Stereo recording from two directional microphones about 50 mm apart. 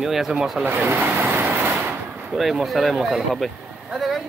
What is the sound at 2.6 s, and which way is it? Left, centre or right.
Speech, centre.